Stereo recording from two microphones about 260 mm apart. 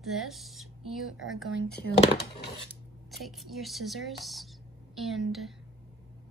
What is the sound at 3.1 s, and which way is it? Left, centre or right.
A woman's voice, centre.